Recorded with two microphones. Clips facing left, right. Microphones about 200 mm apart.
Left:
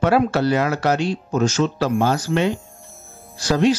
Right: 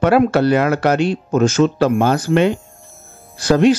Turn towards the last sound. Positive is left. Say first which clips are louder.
# right 5 dB
turn(degrees=-55)  # may be behind; listen again after turning